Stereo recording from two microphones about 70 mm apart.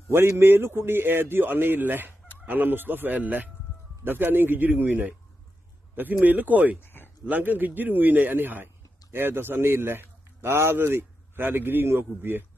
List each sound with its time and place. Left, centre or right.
0.1 s a man's voice: right
6.8 s a sound: left
7.2 s a man's voice: right